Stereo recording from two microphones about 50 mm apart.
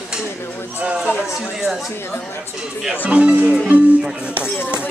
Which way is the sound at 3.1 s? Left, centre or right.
Right.